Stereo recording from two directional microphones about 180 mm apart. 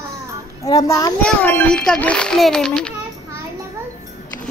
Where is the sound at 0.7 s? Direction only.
15° left (ahead or behind).